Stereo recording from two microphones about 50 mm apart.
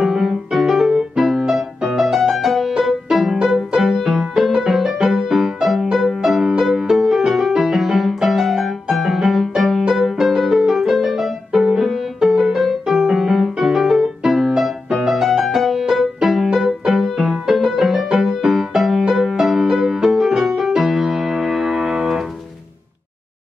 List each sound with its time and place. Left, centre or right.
0.0 s music: centre